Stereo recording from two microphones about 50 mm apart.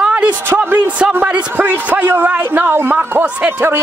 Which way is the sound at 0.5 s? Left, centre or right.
Right.